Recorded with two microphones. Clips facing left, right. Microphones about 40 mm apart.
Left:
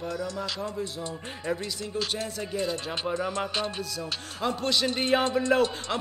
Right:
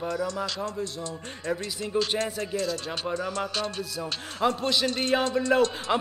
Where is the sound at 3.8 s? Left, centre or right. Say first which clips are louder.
Right 1 dB; centre.